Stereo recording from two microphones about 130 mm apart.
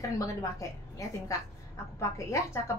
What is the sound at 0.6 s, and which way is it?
Speech, 25° left (ahead or behind).